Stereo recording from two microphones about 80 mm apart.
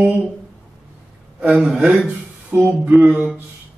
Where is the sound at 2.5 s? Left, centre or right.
Right.